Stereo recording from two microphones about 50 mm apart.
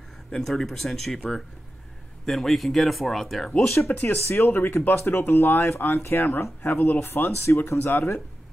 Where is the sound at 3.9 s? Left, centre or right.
Left.